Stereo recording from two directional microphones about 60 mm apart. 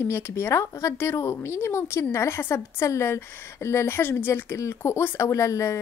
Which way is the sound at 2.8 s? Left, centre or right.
Left.